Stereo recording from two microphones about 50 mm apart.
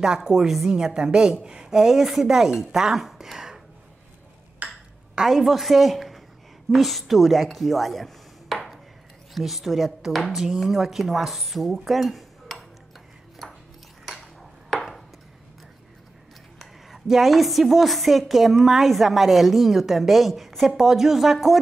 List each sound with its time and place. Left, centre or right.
0.0 s a woman's voice: centre
4.6 s ping: right
5.1 s a woman's voice: centre
14.7 s a sound: centre
16.5 s a woman's voice: centre